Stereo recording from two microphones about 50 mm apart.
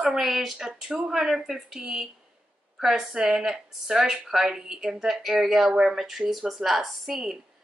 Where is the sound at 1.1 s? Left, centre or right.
Centre.